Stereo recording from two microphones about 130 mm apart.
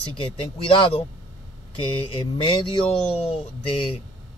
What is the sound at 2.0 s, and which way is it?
Speech, 40° left (ahead or behind).